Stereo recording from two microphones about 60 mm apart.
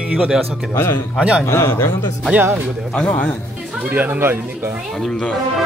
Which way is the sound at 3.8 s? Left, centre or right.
Right.